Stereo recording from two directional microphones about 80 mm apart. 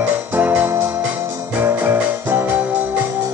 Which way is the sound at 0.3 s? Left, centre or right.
Centre.